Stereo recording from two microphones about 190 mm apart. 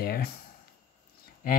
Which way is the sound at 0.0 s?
55° left (ahead or behind).